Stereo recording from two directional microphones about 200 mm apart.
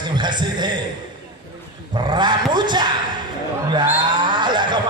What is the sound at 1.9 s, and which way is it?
Speech, 20° right (ahead or behind).